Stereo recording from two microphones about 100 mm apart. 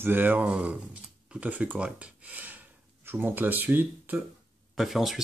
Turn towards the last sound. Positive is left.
turn(degrees=0)  # may be behind; listen again after turning